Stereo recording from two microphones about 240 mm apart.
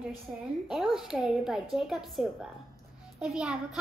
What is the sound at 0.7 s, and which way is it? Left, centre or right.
A woman's voice, centre.